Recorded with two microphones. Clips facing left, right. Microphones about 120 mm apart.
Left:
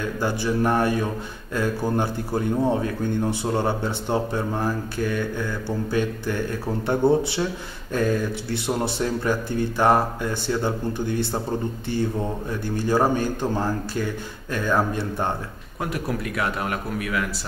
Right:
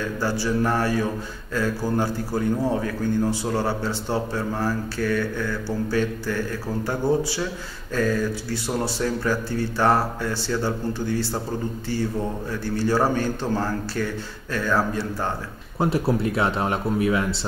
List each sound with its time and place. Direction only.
0.2 s speech: 15° left (ahead or behind)
15.8 s speech: 30° right (ahead or behind)